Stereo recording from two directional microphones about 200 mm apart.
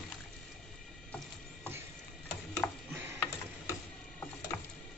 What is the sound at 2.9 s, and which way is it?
Mechanisms, 10° right (ahead or behind).